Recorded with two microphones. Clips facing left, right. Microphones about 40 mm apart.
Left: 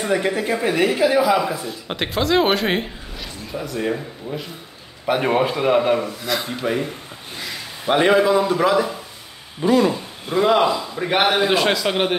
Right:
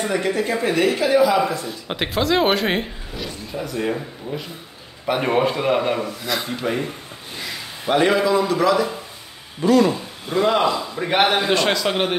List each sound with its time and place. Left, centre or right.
0.0 s a man's voice: centre
7.3 s a sound: centre
7.9 s a man's voice: left; by 12.2 s centre